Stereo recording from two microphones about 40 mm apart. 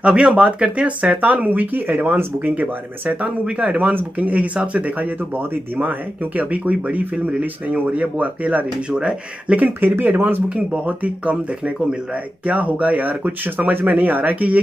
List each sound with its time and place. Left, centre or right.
0.0 s speech: right
8.9 s speech: right
9.6 s speech: right
10.9 s speech: right